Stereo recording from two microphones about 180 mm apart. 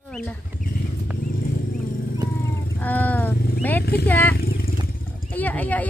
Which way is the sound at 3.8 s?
60° left (ahead or behind).